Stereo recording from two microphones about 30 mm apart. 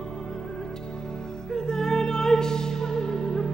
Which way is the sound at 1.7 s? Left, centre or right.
Centre.